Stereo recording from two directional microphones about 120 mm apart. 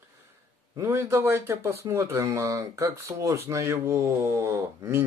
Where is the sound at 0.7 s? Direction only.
25° right (ahead or behind).